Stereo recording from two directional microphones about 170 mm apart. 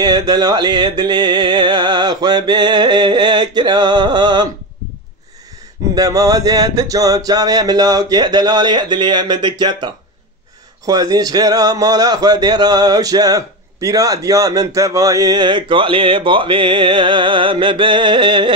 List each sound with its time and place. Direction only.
0.0 s speech: 25° right (ahead or behind)
5.9 s speech: 20° right (ahead or behind)
10.9 s speech: 25° right (ahead or behind)